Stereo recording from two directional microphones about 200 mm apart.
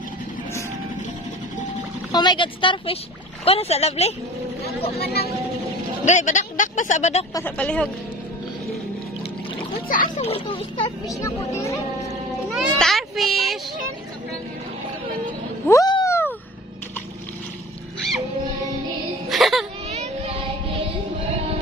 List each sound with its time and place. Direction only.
2.1 s speech: 25° left (ahead or behind)
5.0 s speech: 50° left (ahead or behind)
6.0 s speech: 35° left (ahead or behind)
7.3 s a woman's voice: 10° left (ahead or behind)
9.8 s a child's voice: 40° left (ahead or behind)
10.1 s speech: 30° left (ahead or behind)
12.5 s a sound: centre (ahead or behind)
15.6 s a sound: 15° left (ahead or behind)
19.2 s music: centre (ahead or behind)
19.9 s a sound: 30° right (ahead or behind)